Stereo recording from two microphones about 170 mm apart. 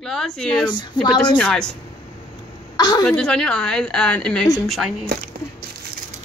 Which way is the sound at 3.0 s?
5° left (ahead or behind).